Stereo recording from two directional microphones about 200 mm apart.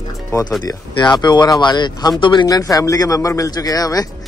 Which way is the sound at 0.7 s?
20° left (ahead or behind).